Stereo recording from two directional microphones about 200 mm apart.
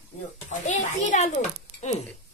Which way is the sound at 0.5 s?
40° left (ahead or behind).